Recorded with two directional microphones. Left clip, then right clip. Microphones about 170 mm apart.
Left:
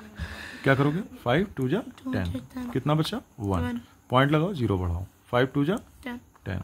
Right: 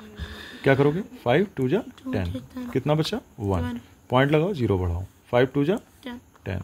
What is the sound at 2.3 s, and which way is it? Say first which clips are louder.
Speech: right 1 dB; 25° left (ahead or behind).